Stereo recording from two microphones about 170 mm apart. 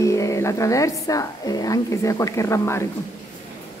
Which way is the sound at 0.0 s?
20° left (ahead or behind).